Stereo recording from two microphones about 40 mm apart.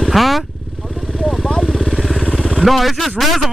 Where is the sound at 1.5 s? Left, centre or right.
Centre.